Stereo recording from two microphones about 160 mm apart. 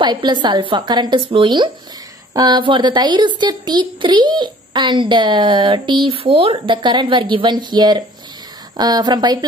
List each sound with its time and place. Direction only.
0.0 s speech: 30° right (ahead or behind)